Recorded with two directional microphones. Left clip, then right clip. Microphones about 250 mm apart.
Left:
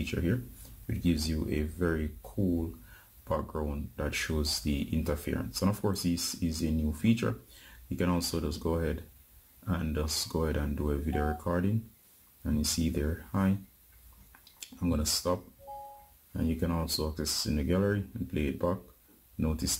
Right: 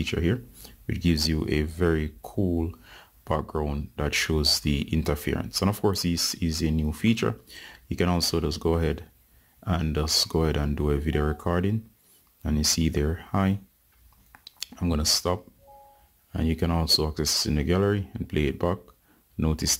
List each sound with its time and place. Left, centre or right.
0.0 s speech: right